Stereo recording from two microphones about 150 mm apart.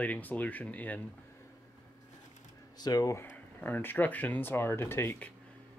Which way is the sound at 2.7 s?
25° left (ahead or behind).